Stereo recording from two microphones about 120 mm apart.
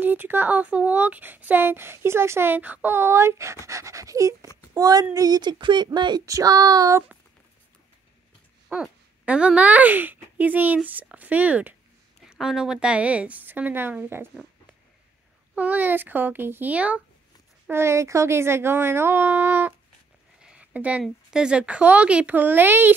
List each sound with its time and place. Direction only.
0.0 s speech: 15° right (ahead or behind)
8.6 s speech: 5° right (ahead or behind)
15.5 s speech: 15° right (ahead or behind)
17.6 s speech: 20° right (ahead or behind)
20.4 s a sound: 10° right (ahead or behind)
21.0 s speech: 5° right (ahead or behind)